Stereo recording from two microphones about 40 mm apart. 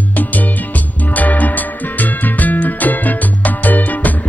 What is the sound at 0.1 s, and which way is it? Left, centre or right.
Music, left.